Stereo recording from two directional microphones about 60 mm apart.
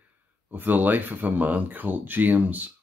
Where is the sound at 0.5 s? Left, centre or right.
Right.